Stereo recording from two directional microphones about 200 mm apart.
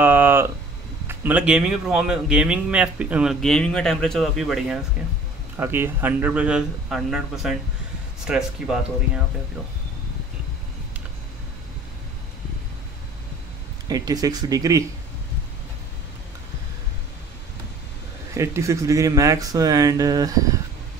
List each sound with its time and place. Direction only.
0.0 s a sound: 10° right (ahead or behind)
1.0 s speech: 10° right (ahead or behind)
13.8 s speech: 20° right (ahead or behind)
18.3 s speech: 15° right (ahead or behind)